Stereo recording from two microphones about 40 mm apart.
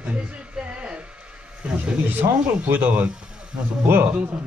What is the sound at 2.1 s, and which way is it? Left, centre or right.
Speech, right.